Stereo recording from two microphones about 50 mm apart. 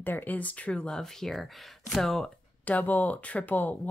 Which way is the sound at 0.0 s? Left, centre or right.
Left.